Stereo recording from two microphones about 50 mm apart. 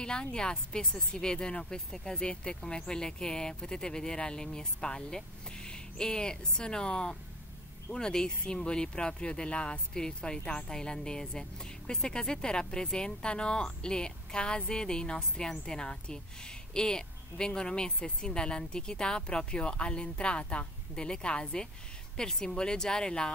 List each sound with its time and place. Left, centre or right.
0.0 s speech: centre